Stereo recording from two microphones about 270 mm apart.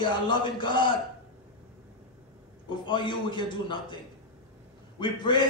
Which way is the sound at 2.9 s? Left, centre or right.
Centre.